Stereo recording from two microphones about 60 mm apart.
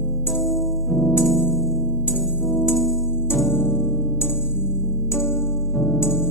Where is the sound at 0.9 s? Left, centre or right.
Left.